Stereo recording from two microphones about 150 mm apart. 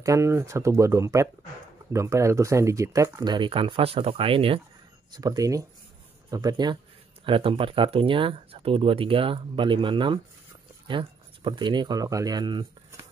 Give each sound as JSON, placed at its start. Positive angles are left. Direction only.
{"t": 0.0, "sound": "speech", "side_deg": -20}
{"t": 5.1, "sound": "speech", "side_deg": -25}